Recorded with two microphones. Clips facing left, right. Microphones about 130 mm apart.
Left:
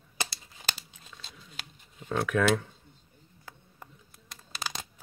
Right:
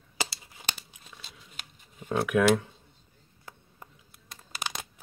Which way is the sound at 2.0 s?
10° right (ahead or behind).